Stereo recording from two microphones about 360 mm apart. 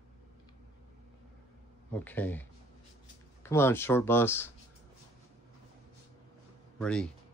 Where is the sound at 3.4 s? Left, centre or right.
Centre.